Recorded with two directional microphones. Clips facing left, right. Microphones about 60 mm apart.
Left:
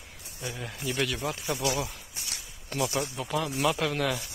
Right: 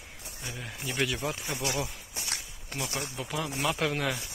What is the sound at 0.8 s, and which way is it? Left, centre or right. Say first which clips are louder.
Speech: left 1 dB; right.